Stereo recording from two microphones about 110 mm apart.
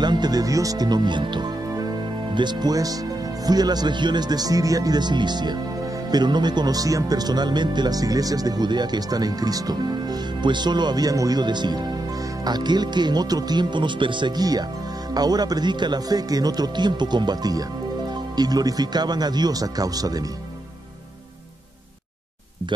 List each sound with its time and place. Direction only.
0.0 s speech: 40° right (ahead or behind)